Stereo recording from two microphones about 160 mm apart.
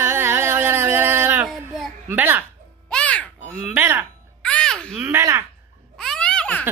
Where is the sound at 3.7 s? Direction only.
15° right (ahead or behind).